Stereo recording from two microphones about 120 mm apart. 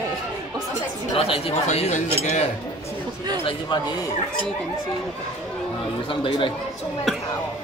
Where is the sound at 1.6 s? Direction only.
70° left (ahead or behind).